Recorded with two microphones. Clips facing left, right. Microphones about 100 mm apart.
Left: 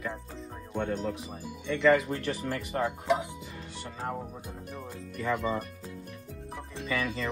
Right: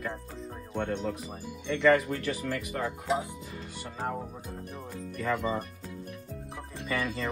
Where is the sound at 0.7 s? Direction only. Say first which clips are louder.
Even; centre (ahead or behind).